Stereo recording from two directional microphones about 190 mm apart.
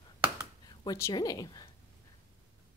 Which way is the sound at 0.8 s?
20° left (ahead or behind).